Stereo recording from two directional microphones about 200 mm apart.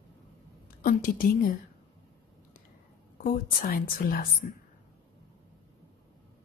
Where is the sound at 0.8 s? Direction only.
45° left (ahead or behind).